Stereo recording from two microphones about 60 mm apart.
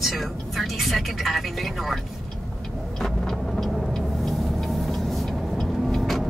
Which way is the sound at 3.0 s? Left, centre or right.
Centre.